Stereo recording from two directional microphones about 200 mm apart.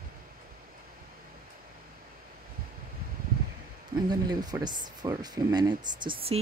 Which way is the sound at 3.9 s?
20° right (ahead or behind).